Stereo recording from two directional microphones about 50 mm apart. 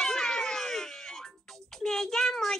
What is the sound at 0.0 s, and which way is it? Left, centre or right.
Music, centre.